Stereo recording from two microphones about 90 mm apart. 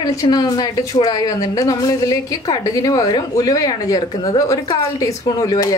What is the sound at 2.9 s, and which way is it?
Speech, 55° left (ahead or behind).